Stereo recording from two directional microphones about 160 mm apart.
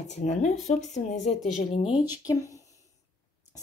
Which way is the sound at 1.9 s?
25° left (ahead or behind).